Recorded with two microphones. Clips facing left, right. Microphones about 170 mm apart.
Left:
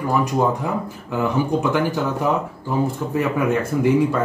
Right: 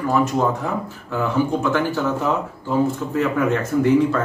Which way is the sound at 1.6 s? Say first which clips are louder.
Even; 15° left (ahead or behind).